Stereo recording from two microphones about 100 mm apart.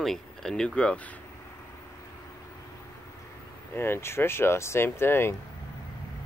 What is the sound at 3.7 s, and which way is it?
Speech, 25° left (ahead or behind).